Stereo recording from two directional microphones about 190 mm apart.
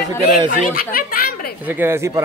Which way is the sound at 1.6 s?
10° right (ahead or behind).